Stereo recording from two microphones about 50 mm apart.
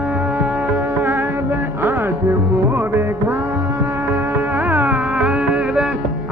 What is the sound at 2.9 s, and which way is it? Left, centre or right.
Music, right.